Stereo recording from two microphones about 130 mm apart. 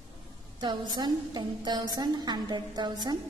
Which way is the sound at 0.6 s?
35° right (ahead or behind).